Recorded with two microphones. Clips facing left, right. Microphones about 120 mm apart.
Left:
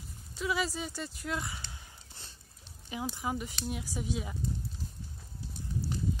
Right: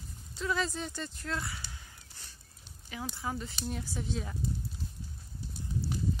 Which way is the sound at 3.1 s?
15° left (ahead or behind).